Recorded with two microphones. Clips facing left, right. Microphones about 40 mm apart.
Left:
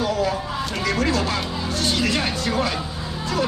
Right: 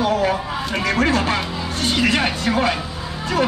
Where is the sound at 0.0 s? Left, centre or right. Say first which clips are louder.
Right 4 dB; right.